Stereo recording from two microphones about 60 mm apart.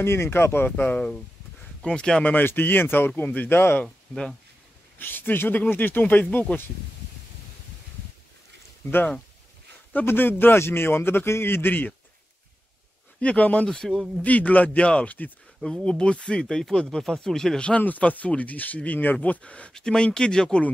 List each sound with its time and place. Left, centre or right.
0.0 s a man's voice: left; by 2.2 s centre
2.2 s a man's voice: left
4.1 s speech: centre
4.9 s a man's voice: left
10.0 s a man's voice: left
13.2 s speech: left
13.7 s speech: centre
14.2 s speech: left
17.8 s a man's voice: left